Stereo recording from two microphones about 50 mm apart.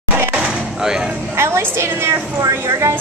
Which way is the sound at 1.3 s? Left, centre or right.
Right.